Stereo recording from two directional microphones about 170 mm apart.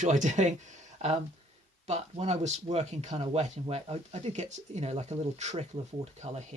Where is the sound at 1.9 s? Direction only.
40° right (ahead or behind).